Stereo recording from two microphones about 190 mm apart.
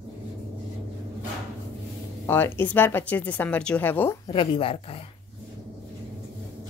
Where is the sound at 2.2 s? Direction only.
10° left (ahead or behind).